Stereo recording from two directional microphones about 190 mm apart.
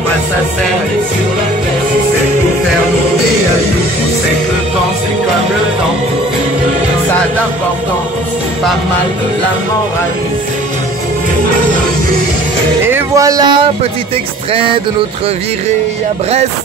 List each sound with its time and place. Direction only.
12.8 s speech: 15° right (ahead or behind)
14.5 s music: 30° right (ahead or behind)